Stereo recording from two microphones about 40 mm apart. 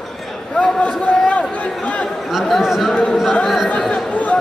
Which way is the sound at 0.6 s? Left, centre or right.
Left.